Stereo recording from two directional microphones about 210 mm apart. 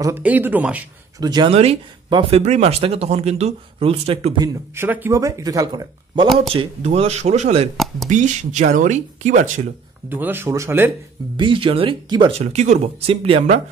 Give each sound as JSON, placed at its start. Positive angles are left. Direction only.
{"t": 0.0, "sound": "speech", "side_deg": -10}
{"t": 1.2, "sound": "speech", "side_deg": -20}
{"t": 4.7, "sound": "speech", "side_deg": -10}
{"t": 6.5, "sound": "speech", "side_deg": -30}
{"t": 7.7, "sound": "speech", "side_deg": 0}
{"t": 8.1, "sound": "speech", "side_deg": -35}
{"t": 10.0, "sound": "speech", "side_deg": -10}
{"t": 11.3, "sound": "speech", "side_deg": -25}